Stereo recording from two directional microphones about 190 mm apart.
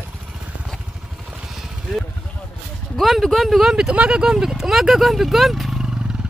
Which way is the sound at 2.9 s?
Centre (ahead or behind).